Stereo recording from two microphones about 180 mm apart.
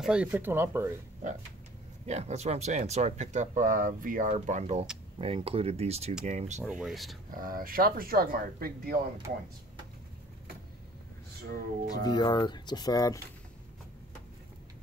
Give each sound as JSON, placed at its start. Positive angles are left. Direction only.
{"t": 0.0, "sound": "speech", "side_deg": -5}
{"t": 2.0, "sound": "speech", "side_deg": -40}
{"t": 6.6, "sound": "speech", "side_deg": 0}
{"t": 7.2, "sound": "speech", "side_deg": -50}
{"t": 11.9, "sound": "speech", "side_deg": 20}